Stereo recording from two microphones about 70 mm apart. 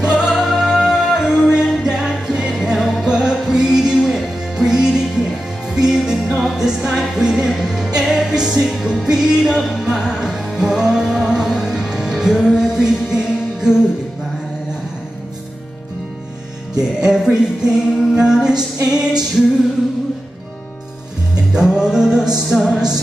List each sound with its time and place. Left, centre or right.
0.0 s music: centre
17.0 s music: centre
21.5 s music: centre